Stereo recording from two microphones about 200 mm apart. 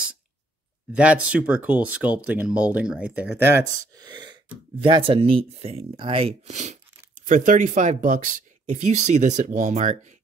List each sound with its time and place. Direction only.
0.9 s speech: 5° right (ahead or behind); by 10.1 s 35° right (ahead or behind)